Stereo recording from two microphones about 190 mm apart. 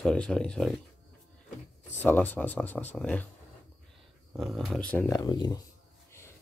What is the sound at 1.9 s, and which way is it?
Speech, 10° left (ahead or behind).